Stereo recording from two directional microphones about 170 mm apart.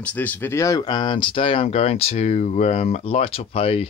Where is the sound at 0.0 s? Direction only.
10° left (ahead or behind).